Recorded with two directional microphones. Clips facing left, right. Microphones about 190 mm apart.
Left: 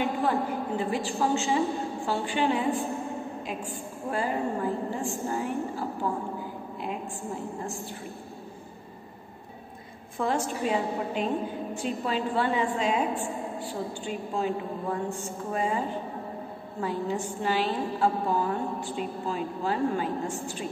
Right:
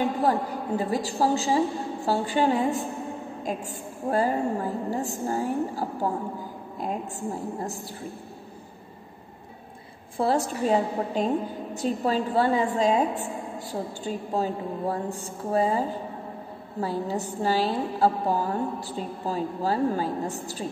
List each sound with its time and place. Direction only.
0.2 s a woman's voice: 40° right (ahead or behind)
10.1 s a woman's voice: 35° right (ahead or behind)